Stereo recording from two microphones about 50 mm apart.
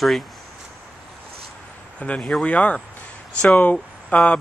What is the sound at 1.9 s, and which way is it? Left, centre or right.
Speech, left.